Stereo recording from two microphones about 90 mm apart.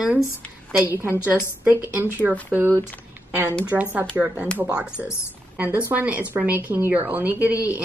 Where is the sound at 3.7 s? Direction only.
15° right (ahead or behind).